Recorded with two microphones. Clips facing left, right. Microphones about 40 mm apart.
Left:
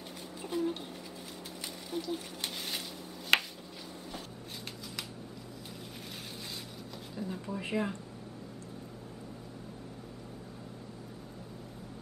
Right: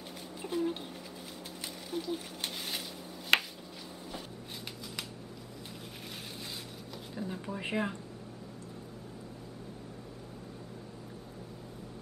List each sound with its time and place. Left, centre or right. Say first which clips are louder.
0.4 s a sound: even; centre
1.9 s speech: even; centre
3.3 s finger snapping: even; centre
7.2 s speech: even; centre